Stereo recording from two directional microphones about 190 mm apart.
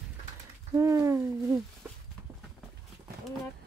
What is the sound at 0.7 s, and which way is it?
Speech, 15° right (ahead or behind).